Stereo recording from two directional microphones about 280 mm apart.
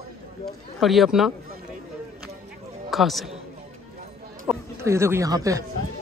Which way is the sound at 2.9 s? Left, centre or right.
Centre.